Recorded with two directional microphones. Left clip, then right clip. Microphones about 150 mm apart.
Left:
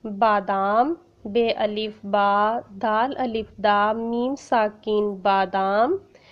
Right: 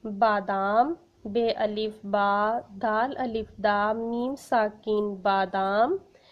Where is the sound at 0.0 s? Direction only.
25° left (ahead or behind).